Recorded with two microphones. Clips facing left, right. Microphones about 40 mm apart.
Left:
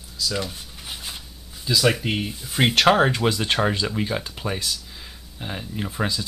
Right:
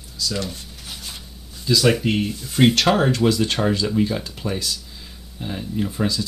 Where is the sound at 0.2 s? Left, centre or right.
Centre.